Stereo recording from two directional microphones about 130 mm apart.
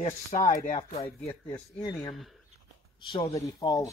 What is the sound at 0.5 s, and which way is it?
Speech, 70° left (ahead or behind).